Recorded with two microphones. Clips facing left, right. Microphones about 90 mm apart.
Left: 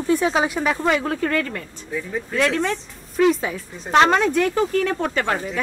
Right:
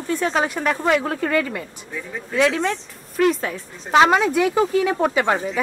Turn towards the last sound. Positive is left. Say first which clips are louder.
# right 3 dB
turn(degrees=-15)  # may be behind; listen again after turning